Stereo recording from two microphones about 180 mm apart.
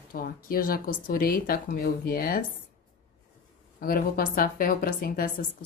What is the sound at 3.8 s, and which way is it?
Speech, 55° left (ahead or behind).